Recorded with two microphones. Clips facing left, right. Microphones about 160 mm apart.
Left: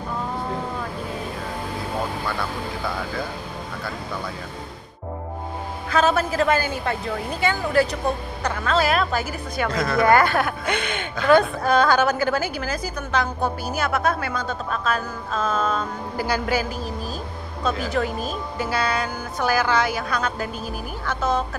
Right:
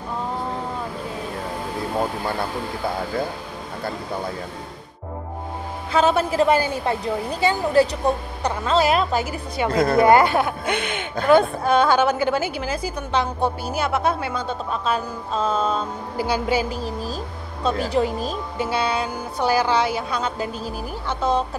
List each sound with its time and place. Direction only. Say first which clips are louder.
5.9 s speech: right 2 dB; 25° right (ahead or behind)